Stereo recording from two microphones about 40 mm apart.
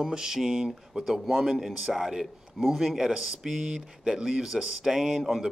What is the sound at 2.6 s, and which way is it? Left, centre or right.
Speech, centre.